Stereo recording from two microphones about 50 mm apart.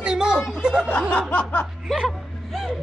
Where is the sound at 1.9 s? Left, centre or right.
Centre.